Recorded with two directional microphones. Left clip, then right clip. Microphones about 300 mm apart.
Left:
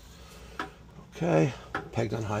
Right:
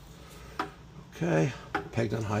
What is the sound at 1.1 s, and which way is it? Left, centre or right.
Speech, centre.